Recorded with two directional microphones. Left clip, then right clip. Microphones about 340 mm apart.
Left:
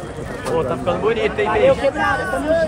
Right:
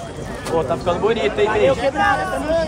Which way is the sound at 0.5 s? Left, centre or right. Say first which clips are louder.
Right 1 dB; right.